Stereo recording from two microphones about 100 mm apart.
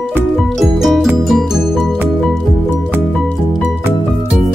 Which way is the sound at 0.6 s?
Centre (ahead or behind).